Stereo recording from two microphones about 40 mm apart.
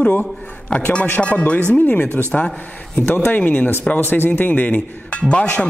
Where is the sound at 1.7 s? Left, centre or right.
Left.